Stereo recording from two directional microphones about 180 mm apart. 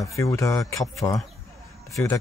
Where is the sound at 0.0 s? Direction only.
15° left (ahead or behind).